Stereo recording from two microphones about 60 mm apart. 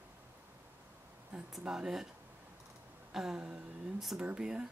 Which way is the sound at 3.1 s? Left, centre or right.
Centre.